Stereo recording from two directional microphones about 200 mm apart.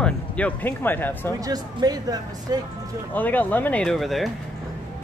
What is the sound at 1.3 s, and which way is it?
Speech, 20° right (ahead or behind).